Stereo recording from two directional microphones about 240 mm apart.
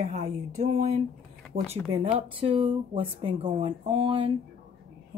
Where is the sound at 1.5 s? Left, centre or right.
Right.